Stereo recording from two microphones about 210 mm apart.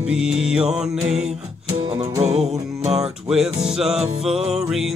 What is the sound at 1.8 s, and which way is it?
Music, 15° right (ahead or behind).